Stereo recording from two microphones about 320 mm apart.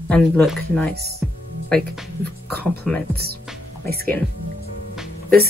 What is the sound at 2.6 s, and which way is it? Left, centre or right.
Speech, centre.